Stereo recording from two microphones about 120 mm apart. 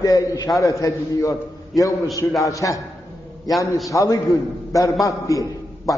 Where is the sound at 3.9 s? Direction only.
25° left (ahead or behind).